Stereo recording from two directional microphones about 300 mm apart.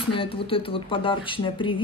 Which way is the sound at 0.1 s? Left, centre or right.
Centre.